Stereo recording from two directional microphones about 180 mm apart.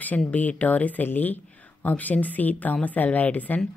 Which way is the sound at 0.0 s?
10° left (ahead or behind).